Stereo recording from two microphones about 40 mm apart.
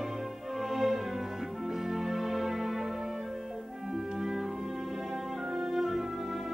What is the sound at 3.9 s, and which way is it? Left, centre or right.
Music, centre.